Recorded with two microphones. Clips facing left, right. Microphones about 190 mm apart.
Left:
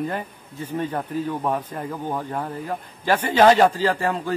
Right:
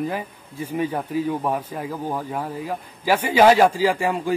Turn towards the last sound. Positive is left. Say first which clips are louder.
# right 2 dB
turn(degrees=-10)  # may be behind; listen again after turning